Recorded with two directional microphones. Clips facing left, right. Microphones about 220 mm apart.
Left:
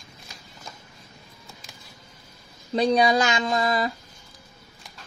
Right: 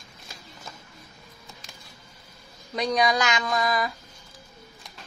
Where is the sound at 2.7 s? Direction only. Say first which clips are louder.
Left 4 dB; 30° left (ahead or behind).